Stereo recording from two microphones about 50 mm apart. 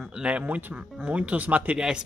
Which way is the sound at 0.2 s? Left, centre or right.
Right.